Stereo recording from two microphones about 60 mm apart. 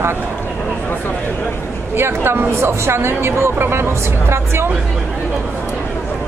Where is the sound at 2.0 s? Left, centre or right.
Right.